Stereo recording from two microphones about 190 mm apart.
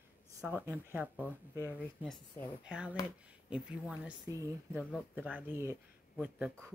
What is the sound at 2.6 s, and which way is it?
Speech, 5° right (ahead or behind).